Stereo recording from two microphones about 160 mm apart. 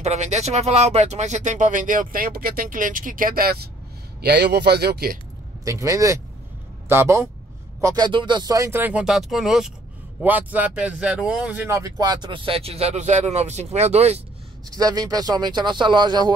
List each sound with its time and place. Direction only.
0.0 s speech: 45° right (ahead or behind); by 3.5 s 65° right (ahead or behind)
4.2 s speech: 85° right; by 5.2 s 70° right (ahead or behind)
5.7 s speech: 20° right (ahead or behind); by 14.2 s 40° right (ahead or behind)
14.8 s speech: 25° right (ahead or behind)